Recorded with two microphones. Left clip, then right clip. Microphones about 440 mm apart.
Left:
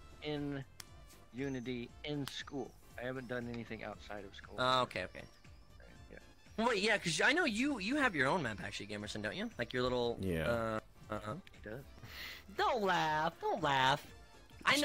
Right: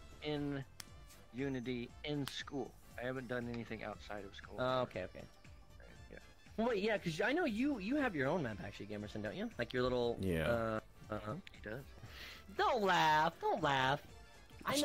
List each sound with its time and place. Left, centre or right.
0.2 s music: centre
1.3 s speech: centre
4.6 s speech: centre
6.5 s speech: centre
11.6 s speech: centre
12.1 s speech: centre